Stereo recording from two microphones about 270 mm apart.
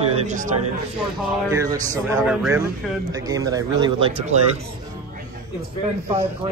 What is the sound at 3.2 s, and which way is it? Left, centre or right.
Speech, centre.